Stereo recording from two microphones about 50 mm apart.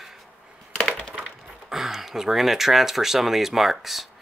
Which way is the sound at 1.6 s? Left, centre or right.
Centre.